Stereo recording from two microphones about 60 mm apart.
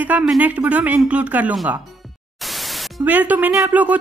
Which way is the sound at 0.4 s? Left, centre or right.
Right.